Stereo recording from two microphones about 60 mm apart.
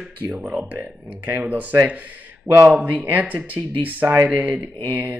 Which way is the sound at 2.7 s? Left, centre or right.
Right.